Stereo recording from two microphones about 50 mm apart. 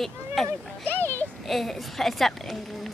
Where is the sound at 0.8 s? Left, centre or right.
Left.